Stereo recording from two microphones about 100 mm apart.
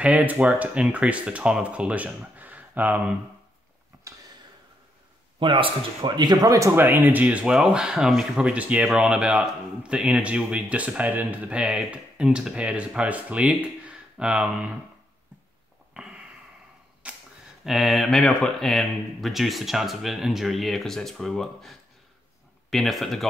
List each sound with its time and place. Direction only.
0.0 s speech: 15° right (ahead or behind)
5.4 s speech: 60° right (ahead or behind); by 6.7 s 35° right (ahead or behind)
6.7 s speech: 20° right (ahead or behind)
15.9 s a sound: 10° right (ahead or behind)
17.6 s speech: centre (ahead or behind)